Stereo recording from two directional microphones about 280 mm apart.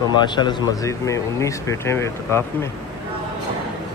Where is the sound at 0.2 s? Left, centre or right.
Centre.